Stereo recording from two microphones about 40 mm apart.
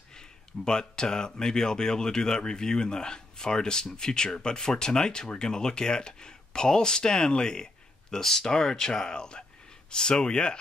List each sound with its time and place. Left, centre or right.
0.7 s speech: centre